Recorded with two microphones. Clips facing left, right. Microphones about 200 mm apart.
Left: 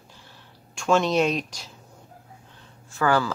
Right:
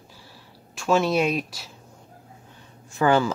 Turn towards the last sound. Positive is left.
turn(degrees=-20)  # may be behind; listen again after turning